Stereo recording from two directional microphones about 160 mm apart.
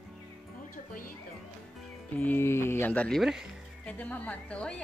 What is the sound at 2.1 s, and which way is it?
Speech, 10° left (ahead or behind).